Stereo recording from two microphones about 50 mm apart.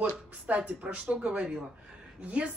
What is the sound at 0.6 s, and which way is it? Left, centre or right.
Speech, right.